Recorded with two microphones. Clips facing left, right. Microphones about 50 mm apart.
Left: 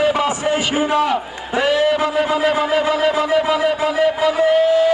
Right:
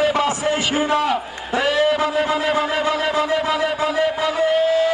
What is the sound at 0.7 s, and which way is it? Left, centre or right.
A man's voice, centre.